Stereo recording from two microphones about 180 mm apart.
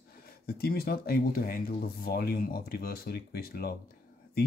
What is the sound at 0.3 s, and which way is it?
Speech, 60° left (ahead or behind).